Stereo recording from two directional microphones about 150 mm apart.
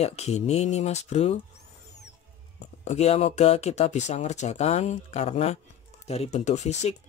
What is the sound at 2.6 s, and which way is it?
Speech, 50° left (ahead or behind).